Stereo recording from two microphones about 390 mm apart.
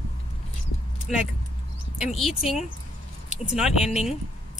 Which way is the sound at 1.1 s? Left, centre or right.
Centre.